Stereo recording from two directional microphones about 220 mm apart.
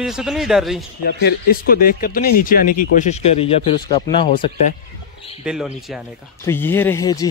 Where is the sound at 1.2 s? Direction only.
40° left (ahead or behind); by 4.3 s 20° left (ahead or behind).